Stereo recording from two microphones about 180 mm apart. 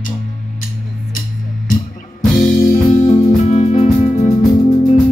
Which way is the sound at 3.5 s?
40° left (ahead or behind).